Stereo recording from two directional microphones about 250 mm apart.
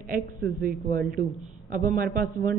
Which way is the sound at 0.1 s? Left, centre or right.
Right.